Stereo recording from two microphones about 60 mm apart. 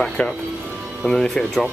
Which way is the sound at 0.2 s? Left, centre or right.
Centre.